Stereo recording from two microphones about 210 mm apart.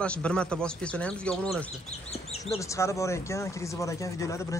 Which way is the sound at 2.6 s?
15° left (ahead or behind).